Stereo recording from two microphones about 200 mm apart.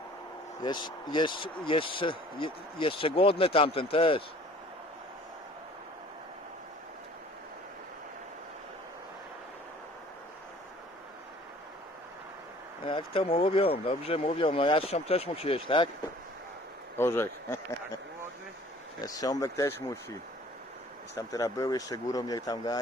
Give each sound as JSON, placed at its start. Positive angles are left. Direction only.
{"t": 0.6, "sound": "speech", "side_deg": 20}
{"t": 12.8, "sound": "speech", "side_deg": 25}
{"t": 16.9, "sound": "speech", "side_deg": 10}
{"t": 18.9, "sound": "speech", "side_deg": 20}